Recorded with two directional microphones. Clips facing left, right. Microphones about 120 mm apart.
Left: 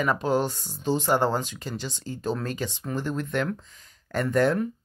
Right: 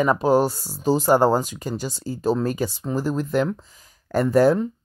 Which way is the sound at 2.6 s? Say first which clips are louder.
Right 6 dB; 40° right (ahead or behind).